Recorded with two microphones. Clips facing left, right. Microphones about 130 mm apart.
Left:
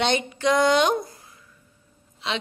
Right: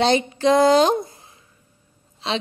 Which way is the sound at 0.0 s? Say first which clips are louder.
Right 5 dB; 35° right (ahead or behind).